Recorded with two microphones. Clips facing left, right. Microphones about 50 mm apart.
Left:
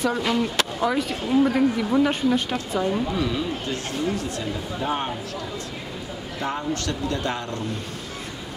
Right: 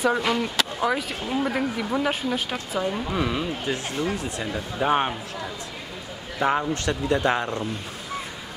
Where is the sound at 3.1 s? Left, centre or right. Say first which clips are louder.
Left 1 dB; right.